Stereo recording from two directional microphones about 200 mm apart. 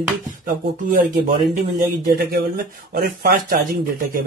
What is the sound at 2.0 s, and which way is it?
Speech, 50° right (ahead or behind).